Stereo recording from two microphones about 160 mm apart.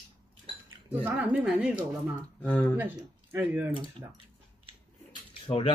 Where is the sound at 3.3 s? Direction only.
10° right (ahead or behind).